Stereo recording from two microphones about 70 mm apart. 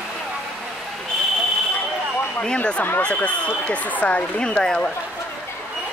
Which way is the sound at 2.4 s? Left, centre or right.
Centre.